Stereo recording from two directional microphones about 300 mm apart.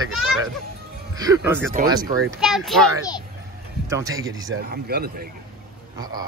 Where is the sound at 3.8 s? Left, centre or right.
Centre.